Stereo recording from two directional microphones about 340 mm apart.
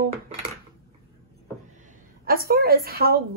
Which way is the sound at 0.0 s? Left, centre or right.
Centre.